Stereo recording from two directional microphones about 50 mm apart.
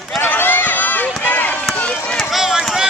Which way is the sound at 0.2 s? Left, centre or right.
Left.